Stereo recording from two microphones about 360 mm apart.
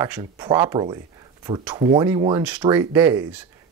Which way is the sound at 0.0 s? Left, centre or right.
Centre.